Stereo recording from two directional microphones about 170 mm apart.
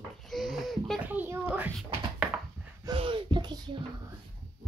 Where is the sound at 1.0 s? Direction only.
10° right (ahead or behind).